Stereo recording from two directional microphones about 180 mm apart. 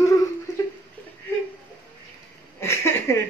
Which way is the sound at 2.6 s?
15° left (ahead or behind).